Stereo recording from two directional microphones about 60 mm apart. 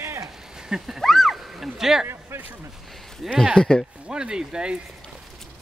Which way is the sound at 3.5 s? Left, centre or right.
Centre.